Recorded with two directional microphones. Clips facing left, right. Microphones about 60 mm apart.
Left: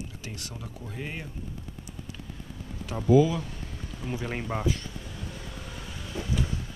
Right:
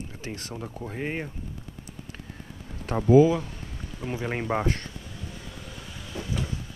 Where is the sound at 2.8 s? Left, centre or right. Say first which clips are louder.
Right 4 dB; right.